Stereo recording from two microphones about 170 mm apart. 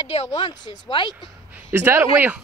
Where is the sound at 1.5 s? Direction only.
15° right (ahead or behind).